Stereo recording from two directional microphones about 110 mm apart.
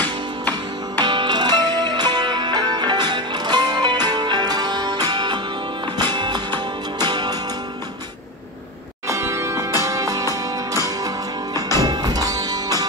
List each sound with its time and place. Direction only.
0.9 s music: 40° right (ahead or behind)
9.0 s music: 25° right (ahead or behind)